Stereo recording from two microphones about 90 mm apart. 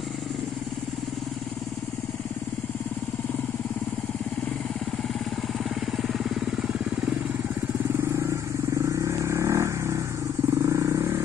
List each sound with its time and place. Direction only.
6.0 s vehicle: centre (ahead or behind)
8.8 s vehicle: 35° right (ahead or behind)